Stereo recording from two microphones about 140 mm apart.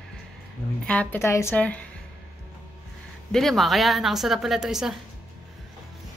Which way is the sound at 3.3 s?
Centre (ahead or behind).